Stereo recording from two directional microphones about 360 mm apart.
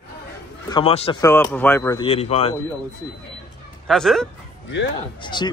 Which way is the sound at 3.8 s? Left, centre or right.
Centre.